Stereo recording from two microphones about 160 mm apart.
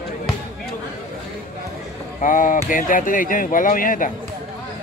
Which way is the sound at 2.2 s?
55° left (ahead or behind).